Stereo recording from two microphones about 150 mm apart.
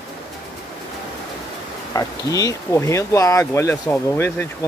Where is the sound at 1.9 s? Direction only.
20° left (ahead or behind).